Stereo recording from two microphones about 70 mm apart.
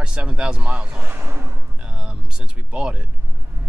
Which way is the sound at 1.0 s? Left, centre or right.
Right.